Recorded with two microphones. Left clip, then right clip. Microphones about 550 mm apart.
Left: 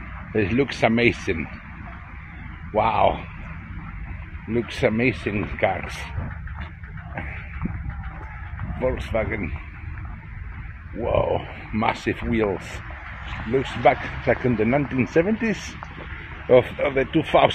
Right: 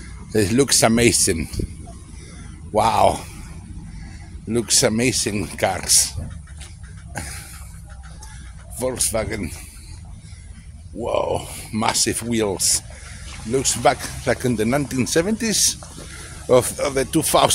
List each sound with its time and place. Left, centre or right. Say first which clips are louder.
0.3 s speech: right 5 dB; right
2.7 s speech: right 3 dB; right
4.6 s speech: right 3 dB; right
8.8 s speech: right 1 dB; right
11.0 s speech: even; right